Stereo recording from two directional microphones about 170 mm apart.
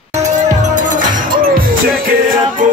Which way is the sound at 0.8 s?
50° right (ahead or behind).